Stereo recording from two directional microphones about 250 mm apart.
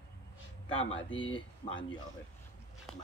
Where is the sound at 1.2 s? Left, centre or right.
Centre.